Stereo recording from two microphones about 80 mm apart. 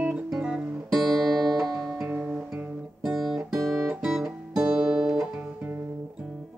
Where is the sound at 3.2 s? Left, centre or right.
Centre.